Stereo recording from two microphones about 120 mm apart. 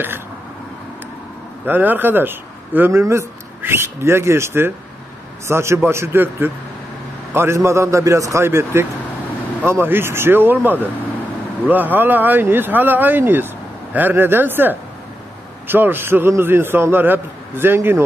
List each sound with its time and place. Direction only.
1.7 s speech: 15° right (ahead or behind)